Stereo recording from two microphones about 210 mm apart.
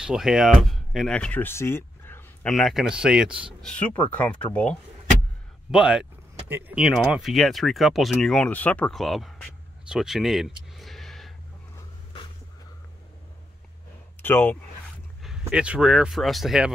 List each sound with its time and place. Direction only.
0.0 s speech: centre (ahead or behind)
5.7 s speech: 5° right (ahead or behind)
14.2 s speech: 10° left (ahead or behind)
15.2 s speech: 5° right (ahead or behind)